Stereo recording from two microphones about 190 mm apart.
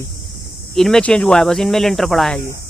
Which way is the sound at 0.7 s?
Centre (ahead or behind).